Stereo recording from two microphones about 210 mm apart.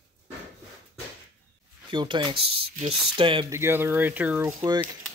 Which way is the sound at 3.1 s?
25° right (ahead or behind).